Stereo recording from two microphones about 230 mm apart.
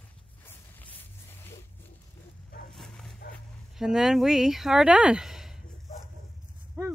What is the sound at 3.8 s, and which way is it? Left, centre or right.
Speech, centre.